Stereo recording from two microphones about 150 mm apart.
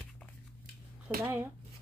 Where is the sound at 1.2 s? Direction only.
15° right (ahead or behind).